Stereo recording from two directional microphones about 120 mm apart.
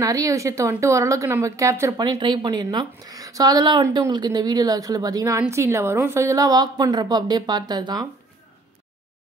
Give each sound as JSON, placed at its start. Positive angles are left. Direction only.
{"t": 0.0, "sound": "a woman's voice", "side_deg": -30}